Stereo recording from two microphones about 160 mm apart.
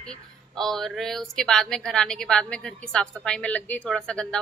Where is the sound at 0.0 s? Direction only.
5° left (ahead or behind).